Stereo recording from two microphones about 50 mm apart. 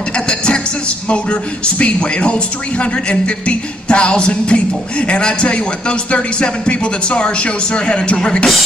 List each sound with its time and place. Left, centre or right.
1.0 s speech: left